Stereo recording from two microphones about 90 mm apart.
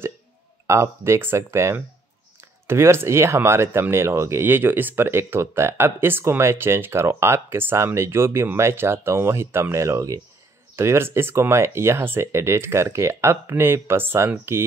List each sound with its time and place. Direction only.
0.7 s speech: 30° right (ahead or behind)